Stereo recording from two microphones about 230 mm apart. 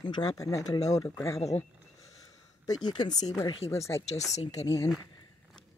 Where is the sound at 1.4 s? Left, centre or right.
Left.